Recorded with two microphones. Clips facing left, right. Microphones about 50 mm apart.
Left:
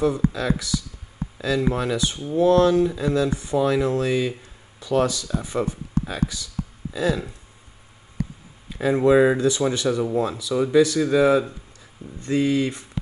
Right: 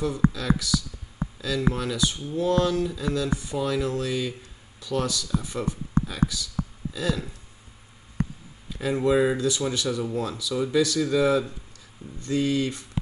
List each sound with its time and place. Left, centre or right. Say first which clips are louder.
0.3 s speech: left 1 dB; left
8.6 s speech: left 5 dB; left